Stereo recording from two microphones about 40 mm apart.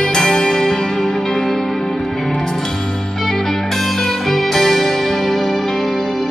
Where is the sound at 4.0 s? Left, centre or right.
Centre.